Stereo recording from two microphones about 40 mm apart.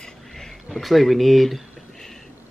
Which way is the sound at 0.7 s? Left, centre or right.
Centre.